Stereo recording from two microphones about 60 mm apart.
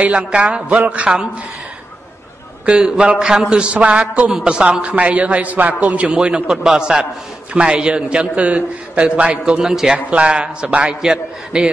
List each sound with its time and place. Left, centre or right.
0.0 s a man's voice: centre
2.6 s a man's voice: centre
9.5 s a man's voice: centre
9.9 s a man's voice: right